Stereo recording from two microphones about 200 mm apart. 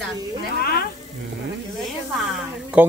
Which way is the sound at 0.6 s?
50° left (ahead or behind).